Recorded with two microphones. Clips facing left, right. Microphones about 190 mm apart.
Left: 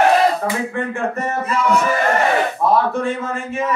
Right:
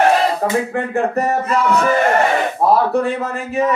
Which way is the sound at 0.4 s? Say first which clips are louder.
Right 3 dB; 35° right (ahead or behind).